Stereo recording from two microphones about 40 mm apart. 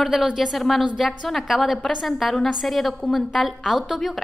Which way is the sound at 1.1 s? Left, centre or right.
Centre.